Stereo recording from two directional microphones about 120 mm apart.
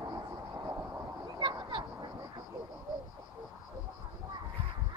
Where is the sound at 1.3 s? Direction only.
40° right (ahead or behind).